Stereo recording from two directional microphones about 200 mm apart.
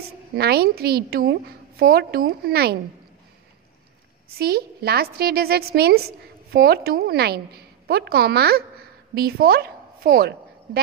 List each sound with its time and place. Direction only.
0.4 s a woman's voice: 50° right (ahead or behind)
4.4 s a woman's voice: 50° right (ahead or behind)